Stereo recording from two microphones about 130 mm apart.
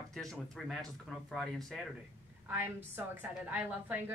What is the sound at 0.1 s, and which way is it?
Speech, 5° left (ahead or behind).